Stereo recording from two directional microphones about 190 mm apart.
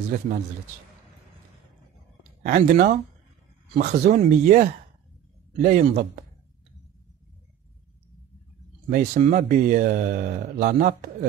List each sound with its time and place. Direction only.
2.4 s speech: 45° right (ahead or behind)
8.8 s speech: 40° right (ahead or behind)